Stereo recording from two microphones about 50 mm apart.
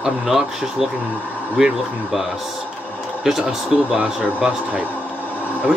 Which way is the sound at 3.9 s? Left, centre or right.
Right.